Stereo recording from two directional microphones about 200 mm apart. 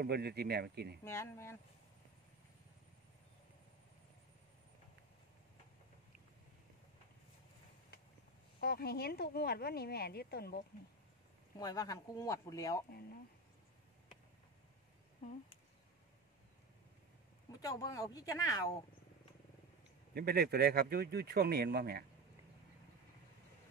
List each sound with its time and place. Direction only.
0.0 s speech: 55° right (ahead or behind)
1.0 s speech: 15° left (ahead or behind)
8.5 s speech: 50° left (ahead or behind)
11.5 s speech: 20° left (ahead or behind)
17.5 s speech: 20° left (ahead or behind)
20.2 s speech: 50° right (ahead or behind)